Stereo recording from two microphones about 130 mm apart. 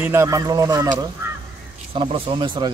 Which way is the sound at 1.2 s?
20° right (ahead or behind).